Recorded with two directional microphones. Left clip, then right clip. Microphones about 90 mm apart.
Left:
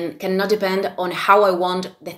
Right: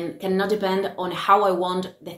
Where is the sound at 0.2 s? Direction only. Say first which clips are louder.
Left 3 dB; 40° right (ahead or behind).